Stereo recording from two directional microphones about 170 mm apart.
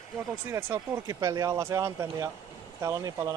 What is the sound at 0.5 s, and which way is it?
Speech, 15° right (ahead or behind).